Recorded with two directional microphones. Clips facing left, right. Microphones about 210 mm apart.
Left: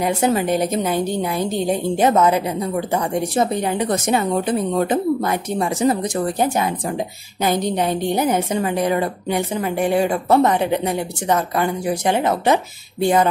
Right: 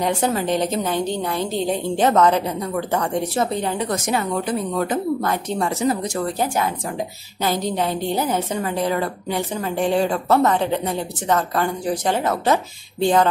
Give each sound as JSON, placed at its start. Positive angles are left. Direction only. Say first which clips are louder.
{"t": 0.0, "sound": "a woman's voice", "louder": "left 3 dB", "side_deg": 10}
{"t": 5.2, "sound": "a woman's voice", "louder": "left 1 dB", "side_deg": 10}
{"t": 5.8, "sound": "a woman's voice", "louder": "left 3 dB", "side_deg": 25}